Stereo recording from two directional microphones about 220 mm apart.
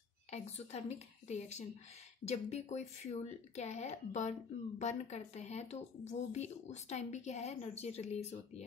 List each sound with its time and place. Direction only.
0.3 s speech: 30° left (ahead or behind)